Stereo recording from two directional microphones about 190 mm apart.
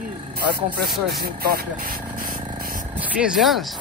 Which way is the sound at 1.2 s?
55° right (ahead or behind).